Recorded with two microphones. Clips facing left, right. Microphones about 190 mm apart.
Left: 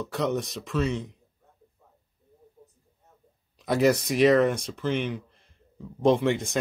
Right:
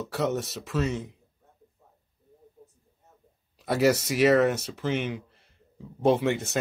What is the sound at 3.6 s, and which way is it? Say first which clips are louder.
Speech: left 1 dB; 5° right (ahead or behind).